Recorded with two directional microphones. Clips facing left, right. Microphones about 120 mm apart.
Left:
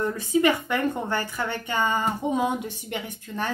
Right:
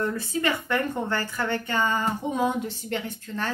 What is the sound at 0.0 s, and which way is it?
A woman's voice, 15° left (ahead or behind).